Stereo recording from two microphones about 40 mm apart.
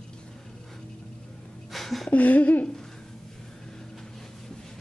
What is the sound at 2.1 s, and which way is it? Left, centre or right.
Speech, left.